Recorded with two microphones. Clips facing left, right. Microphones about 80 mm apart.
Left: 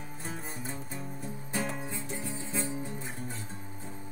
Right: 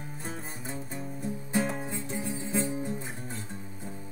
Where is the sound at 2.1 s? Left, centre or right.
Right.